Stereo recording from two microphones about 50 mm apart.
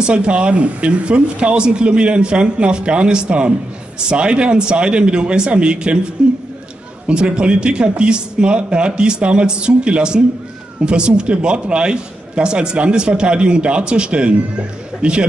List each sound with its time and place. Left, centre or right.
0.0 s speech: centre